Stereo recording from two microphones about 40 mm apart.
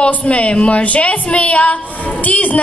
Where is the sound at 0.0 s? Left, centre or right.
Left.